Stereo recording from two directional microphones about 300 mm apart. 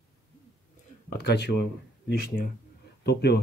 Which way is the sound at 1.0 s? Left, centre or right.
Left.